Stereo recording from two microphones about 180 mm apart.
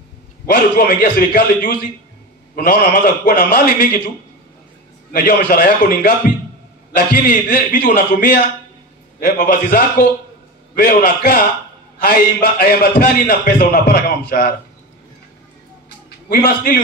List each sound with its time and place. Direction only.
0.5 s speech: 60° left (ahead or behind)
5.1 s a man's voice: 50° left (ahead or behind)
16.3 s a man's voice: 50° left (ahead or behind)